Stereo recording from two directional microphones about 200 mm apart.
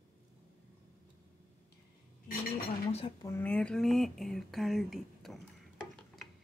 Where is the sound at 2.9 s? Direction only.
25° left (ahead or behind).